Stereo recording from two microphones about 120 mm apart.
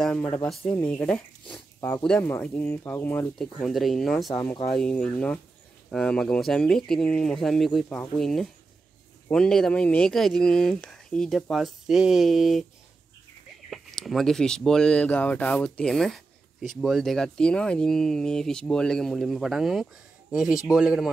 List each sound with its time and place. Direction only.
0.0 s speech: 10° left (ahead or behind)
3.3 s speech: 5° left (ahead or behind)
13.7 s a man's voice: centre (ahead or behind)